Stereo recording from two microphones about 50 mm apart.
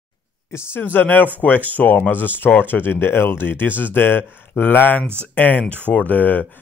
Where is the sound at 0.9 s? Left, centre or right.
Left.